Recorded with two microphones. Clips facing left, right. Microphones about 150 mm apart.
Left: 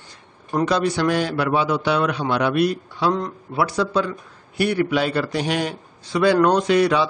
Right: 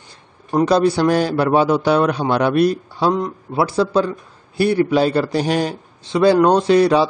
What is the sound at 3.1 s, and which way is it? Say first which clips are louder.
Speech: right 3 dB; 15° right (ahead or behind).